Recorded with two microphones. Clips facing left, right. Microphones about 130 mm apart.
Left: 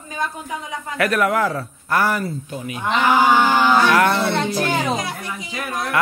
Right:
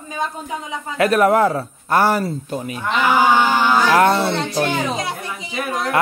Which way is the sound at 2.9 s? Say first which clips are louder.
Even; 15° right (ahead or behind).